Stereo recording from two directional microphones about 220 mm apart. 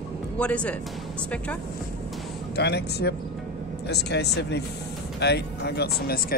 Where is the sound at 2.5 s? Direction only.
50° left (ahead or behind).